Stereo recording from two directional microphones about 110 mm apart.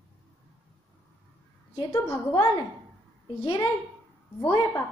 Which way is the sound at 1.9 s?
25° left (ahead or behind).